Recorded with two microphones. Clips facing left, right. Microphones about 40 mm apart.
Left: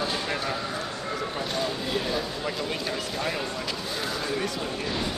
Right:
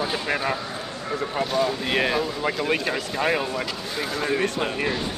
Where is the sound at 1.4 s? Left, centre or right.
Centre.